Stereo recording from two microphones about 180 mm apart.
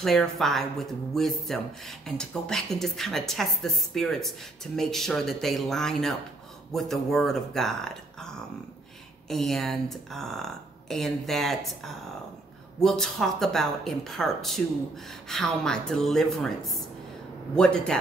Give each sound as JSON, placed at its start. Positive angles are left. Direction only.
{"t": 0.0, "sound": "speech", "side_deg": 0}
{"t": 9.3, "sound": "speech", "side_deg": 0}